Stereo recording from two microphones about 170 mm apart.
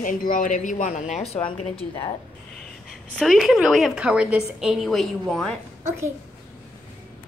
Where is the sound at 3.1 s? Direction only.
Centre (ahead or behind).